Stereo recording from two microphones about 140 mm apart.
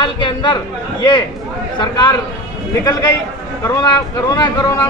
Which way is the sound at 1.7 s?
30° left (ahead or behind).